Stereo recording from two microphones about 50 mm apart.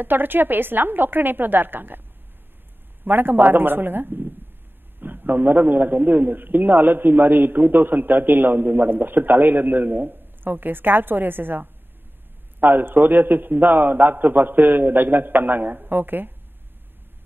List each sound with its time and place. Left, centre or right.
0.0 s a man's voice: right
3.1 s a man's voice: right